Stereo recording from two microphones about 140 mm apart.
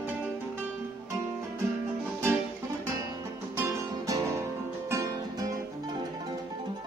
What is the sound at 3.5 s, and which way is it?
Music, 20° right (ahead or behind).